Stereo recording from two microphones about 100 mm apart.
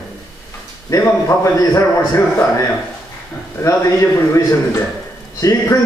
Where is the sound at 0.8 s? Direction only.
30° left (ahead or behind).